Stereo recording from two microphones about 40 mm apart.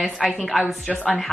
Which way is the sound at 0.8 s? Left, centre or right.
Left.